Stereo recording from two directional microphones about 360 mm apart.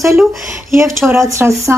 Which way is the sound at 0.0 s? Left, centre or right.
Centre.